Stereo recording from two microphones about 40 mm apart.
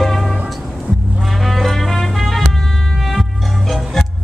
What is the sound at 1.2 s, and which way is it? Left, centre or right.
Music, centre.